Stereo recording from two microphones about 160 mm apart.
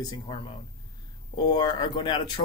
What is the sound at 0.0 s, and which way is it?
Speech, 30° left (ahead or behind).